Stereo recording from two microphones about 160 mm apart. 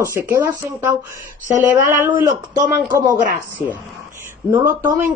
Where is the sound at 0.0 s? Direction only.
15° right (ahead or behind).